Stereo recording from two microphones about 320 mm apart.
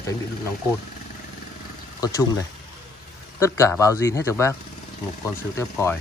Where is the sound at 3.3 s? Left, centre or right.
Centre.